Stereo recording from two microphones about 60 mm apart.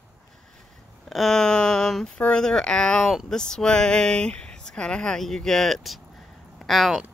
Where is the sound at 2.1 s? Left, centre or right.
Centre.